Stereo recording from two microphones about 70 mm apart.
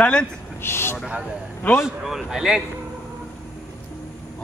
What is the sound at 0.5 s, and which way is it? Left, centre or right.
Vehicle, left.